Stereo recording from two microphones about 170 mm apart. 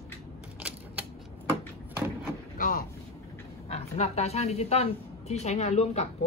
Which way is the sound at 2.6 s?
55° left (ahead or behind).